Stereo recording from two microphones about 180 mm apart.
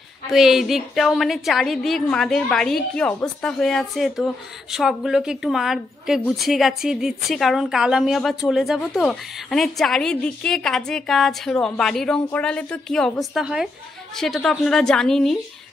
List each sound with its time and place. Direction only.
0.3 s a woman's voice: centre (ahead or behind)